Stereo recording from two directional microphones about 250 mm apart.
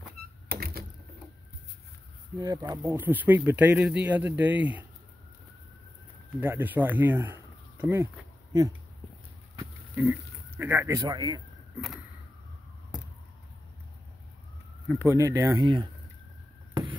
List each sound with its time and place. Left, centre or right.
0.5 s a sound: right
2.3 s speech: centre
6.4 s speech: centre
9.6 s pig: centre
10.6 s speech: centre
14.9 s speech: centre